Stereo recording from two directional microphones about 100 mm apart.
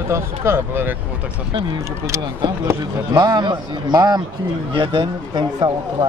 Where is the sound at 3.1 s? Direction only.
40° right (ahead or behind).